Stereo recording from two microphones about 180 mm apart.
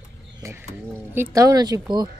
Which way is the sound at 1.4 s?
20° right (ahead or behind).